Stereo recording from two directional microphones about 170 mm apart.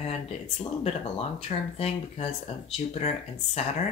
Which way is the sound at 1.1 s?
40° left (ahead or behind).